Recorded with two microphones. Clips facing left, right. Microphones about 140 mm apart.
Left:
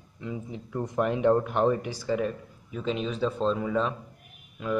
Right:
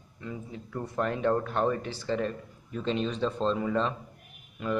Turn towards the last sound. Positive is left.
turn(degrees=5)  # may be behind; listen again after turning